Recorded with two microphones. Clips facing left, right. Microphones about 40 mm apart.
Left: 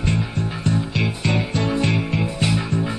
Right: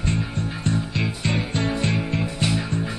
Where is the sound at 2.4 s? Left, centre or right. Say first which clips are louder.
Left 2 dB; centre.